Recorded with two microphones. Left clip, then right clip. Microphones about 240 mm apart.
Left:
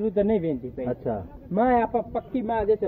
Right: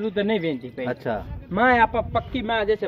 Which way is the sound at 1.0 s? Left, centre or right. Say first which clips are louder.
Right 2 dB; right.